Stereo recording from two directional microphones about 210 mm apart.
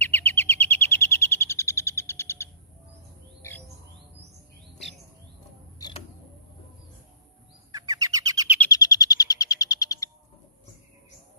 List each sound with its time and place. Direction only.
0.0 s bird: 10° left (ahead or behind)
5.8 s a sound: 20° left (ahead or behind)
8.0 s bird: 15° right (ahead or behind)
8.5 s bird: 15° left (ahead or behind)